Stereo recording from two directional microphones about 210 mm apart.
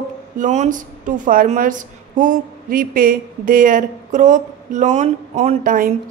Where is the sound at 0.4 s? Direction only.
35° right (ahead or behind).